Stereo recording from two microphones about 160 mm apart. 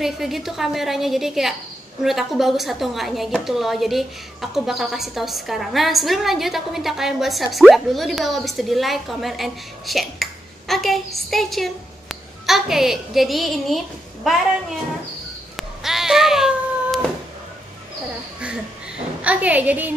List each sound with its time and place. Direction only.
0.0 s a woman's voice: centre (ahead or behind)
15.5 s cat: centre (ahead or behind)
19.2 s a woman's voice: 10° right (ahead or behind)